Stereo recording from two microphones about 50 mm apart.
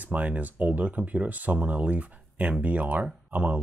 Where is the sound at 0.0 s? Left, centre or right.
Right.